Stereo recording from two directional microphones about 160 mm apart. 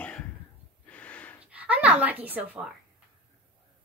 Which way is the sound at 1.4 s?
10° right (ahead or behind).